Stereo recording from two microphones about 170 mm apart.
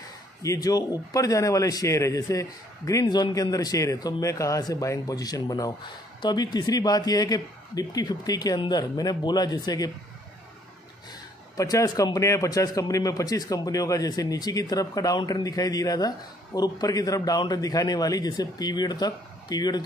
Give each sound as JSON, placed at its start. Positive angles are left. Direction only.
{"t": 0.4, "sound": "a man's voice", "side_deg": 20}
{"t": 11.5, "sound": "a man's voice", "side_deg": 20}